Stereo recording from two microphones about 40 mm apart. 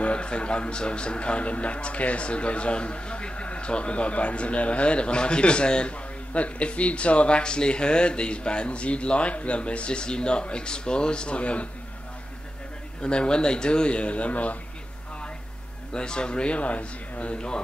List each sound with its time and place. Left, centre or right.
0.0 s speech: left
13.0 s speech: left
15.9 s speech: left